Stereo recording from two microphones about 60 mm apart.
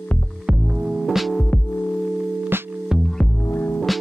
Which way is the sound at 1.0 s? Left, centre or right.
Centre.